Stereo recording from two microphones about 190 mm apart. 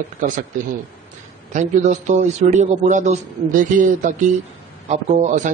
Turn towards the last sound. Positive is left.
turn(degrees=-40)  # may be behind; listen again after turning